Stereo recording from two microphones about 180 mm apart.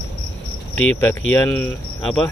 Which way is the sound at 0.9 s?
15° left (ahead or behind).